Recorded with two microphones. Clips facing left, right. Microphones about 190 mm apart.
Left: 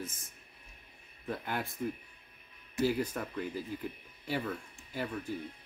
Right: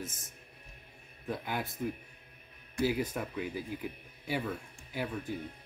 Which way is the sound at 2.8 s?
5° right (ahead or behind).